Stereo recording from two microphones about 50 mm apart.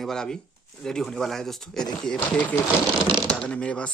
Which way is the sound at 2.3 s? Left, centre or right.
Left.